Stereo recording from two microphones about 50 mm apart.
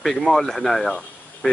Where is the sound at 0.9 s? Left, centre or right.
Left.